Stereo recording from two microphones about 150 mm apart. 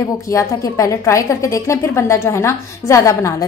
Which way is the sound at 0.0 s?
20° left (ahead or behind).